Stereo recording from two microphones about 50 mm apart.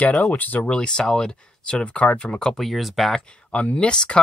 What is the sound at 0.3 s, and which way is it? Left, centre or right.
Speech, left.